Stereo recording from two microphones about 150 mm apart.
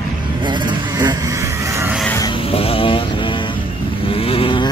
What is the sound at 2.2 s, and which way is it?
Vehicle, 35° left (ahead or behind).